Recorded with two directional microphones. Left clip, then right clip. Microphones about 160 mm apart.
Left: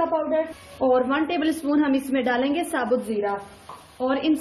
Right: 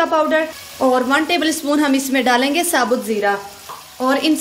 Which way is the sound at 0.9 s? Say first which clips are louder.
Right 5 dB; 25° right (ahead or behind).